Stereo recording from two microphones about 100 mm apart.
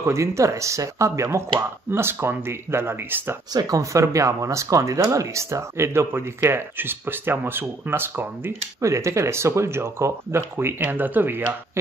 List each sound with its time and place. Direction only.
0.0 s speech: 30° right (ahead or behind)
3.5 s speech: 35° right (ahead or behind); by 11.8 s 20° right (ahead or behind)